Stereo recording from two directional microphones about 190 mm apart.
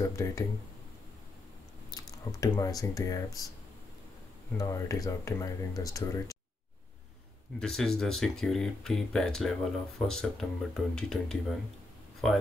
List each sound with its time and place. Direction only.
0.0 s speech: 15° left (ahead or behind)
1.9 s speech: 20° left (ahead or behind)
4.6 s speech: 15° left (ahead or behind)
7.6 s speech: centre (ahead or behind)